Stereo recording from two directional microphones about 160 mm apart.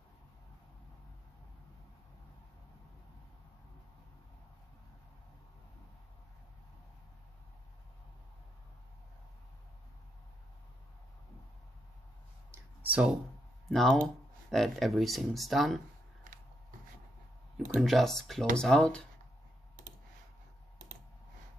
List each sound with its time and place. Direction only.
12.4 s a sound: 10° right (ahead or behind)
13.7 s speech: centre (ahead or behind)
17.7 s speech: centre (ahead or behind)